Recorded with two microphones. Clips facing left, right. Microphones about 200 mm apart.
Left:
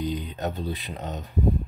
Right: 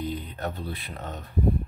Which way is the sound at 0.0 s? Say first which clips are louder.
Left 3 dB; 15° left (ahead or behind).